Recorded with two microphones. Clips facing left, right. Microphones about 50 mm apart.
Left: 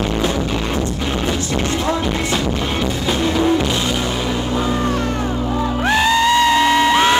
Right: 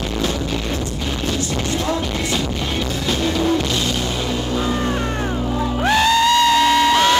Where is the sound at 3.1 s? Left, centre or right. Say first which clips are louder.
Left 2 dB; left.